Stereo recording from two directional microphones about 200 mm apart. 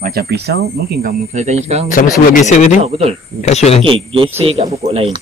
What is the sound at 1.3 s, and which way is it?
Speech, 35° right (ahead or behind).